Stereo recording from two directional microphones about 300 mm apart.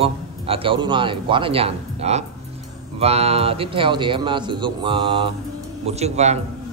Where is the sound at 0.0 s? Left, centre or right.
Centre.